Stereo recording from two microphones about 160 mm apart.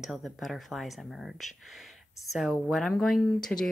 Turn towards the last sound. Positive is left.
turn(degrees=5)  # may be behind; listen again after turning